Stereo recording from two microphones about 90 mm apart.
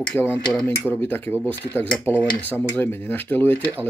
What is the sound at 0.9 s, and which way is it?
Speech, 25° left (ahead or behind).